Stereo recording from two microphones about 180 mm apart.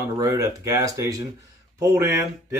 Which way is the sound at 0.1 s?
20° right (ahead or behind).